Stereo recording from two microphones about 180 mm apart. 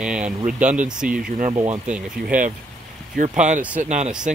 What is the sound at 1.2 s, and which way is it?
Speech, 45° right (ahead or behind).